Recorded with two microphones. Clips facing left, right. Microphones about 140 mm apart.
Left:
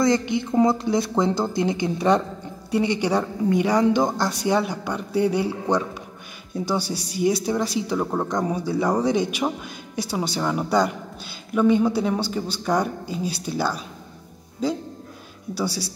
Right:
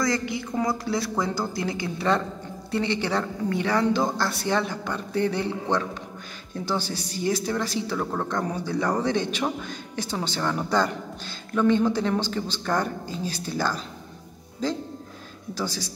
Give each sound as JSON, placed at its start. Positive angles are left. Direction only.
{"t": 0.0, "sound": "speech", "side_deg": 20}
{"t": 15.5, "sound": "speech", "side_deg": 10}